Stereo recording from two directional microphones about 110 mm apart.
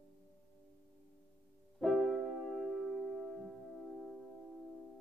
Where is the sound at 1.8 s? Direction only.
Centre (ahead or behind).